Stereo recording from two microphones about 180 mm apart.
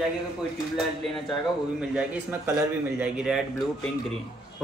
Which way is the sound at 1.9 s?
5° right (ahead or behind).